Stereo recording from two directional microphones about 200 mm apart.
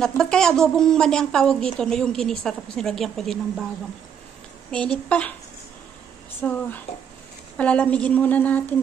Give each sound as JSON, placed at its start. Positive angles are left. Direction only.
{"t": 0.0, "sound": "a woman's voice", "side_deg": 5}
{"t": 4.6, "sound": "a woman's voice", "side_deg": 5}
{"t": 6.4, "sound": "a woman's voice", "side_deg": 10}
{"t": 6.9, "sound": "speech", "side_deg": 30}
{"t": 7.5, "sound": "a woman's voice", "side_deg": 5}